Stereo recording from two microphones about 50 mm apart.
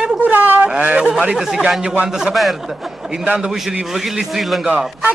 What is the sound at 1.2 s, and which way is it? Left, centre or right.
Speech, centre.